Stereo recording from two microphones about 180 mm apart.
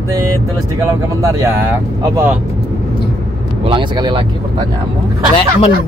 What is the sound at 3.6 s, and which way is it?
Speech, 25° right (ahead or behind).